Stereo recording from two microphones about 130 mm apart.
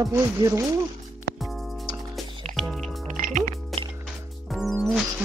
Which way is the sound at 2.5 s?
90° right.